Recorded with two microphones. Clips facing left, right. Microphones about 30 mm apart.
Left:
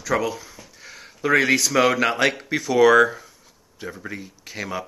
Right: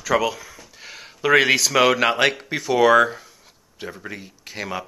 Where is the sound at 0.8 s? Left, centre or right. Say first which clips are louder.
Right 2 dB; right.